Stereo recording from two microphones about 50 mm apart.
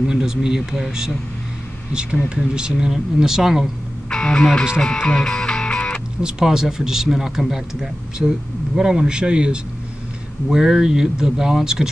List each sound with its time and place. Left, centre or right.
0.1 s speech: centre
2.2 s speech: centre
4.1 s speech: centre
4.7 s music: centre
6.2 s speech: centre